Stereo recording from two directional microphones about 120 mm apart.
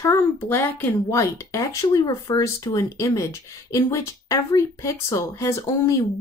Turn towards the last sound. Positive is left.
turn(degrees=25)  # may be behind; listen again after turning